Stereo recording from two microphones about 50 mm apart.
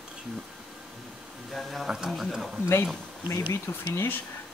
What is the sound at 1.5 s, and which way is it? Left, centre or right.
Speech, centre.